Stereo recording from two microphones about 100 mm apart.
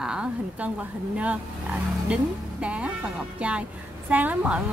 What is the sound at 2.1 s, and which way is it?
Speech, 10° right (ahead or behind).